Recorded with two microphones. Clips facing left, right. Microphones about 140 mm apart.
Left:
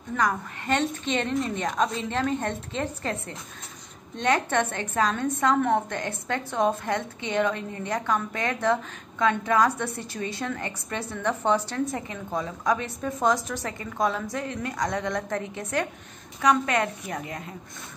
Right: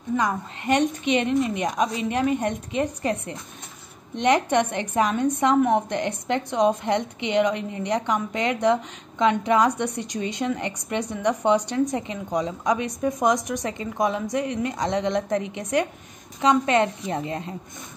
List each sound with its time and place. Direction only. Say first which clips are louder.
0.1 s a woman's voice: right 2 dB; 15° right (ahead or behind)